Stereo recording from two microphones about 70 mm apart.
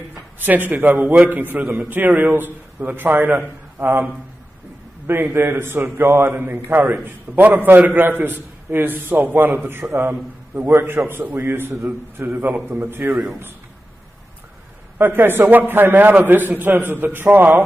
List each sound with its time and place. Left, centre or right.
0.4 s a man's voice: right
5.0 s a man's voice: right
15.0 s a man's voice: right